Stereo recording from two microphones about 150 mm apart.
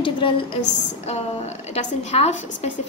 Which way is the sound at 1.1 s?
45° left (ahead or behind).